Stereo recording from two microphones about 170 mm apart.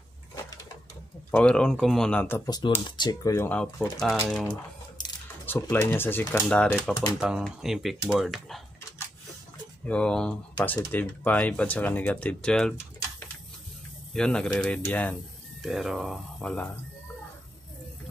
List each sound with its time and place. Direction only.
1.3 s speech: 5° left (ahead or behind)
9.8 s speech: 5° left (ahead or behind)
14.1 s speech: 5° left (ahead or behind)
15.6 s speech: centre (ahead or behind)